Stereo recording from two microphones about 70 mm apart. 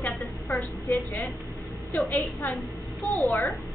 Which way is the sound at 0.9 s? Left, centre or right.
Left.